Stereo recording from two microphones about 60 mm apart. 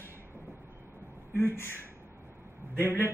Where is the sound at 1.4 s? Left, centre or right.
Left.